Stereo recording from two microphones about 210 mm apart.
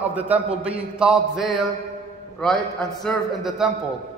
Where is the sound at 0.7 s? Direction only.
5° right (ahead or behind).